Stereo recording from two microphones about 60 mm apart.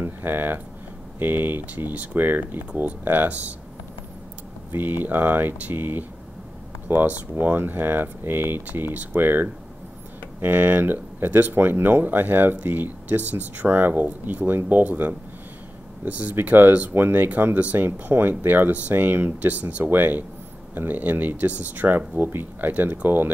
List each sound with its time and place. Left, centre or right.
0.0 s speech: right
4.7 s speech: right